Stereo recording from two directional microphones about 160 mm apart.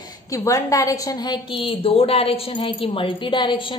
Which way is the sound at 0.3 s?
15° left (ahead or behind).